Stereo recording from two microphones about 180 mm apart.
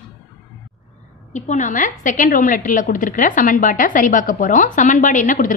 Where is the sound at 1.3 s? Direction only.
40° left (ahead or behind).